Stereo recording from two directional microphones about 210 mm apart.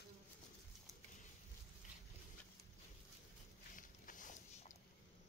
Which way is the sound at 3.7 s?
40° left (ahead or behind).